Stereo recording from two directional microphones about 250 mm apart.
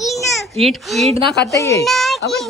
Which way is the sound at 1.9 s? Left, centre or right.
Centre.